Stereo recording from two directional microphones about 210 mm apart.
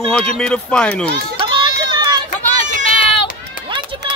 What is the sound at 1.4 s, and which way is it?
Run, 25° right (ahead or behind).